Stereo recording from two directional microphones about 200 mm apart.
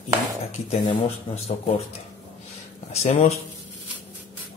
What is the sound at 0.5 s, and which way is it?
Speech, 30° left (ahead or behind).